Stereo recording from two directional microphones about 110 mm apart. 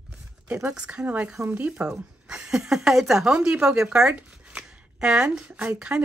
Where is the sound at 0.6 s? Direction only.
10° right (ahead or behind).